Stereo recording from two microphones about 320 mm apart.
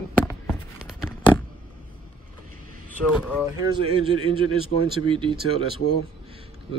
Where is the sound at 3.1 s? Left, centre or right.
Centre.